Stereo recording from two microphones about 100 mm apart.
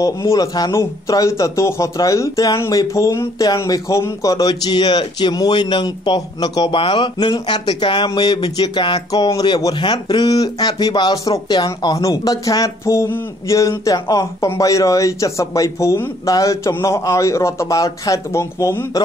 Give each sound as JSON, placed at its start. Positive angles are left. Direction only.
{"t": 0.0, "sound": "speech", "side_deg": 35}
{"t": 6.8, "sound": "speech", "side_deg": 55}
{"t": 9.1, "sound": "speech", "side_deg": 40}